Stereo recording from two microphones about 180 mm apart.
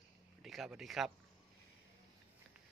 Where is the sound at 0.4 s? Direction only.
Centre (ahead or behind).